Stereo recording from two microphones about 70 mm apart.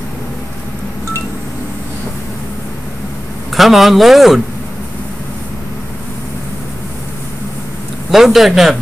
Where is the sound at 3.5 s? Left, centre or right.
Centre.